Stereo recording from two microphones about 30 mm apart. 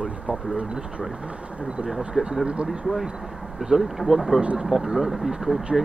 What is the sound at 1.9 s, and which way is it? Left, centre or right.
Speech, centre.